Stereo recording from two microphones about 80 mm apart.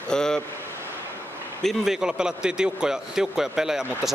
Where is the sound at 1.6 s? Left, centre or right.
Centre.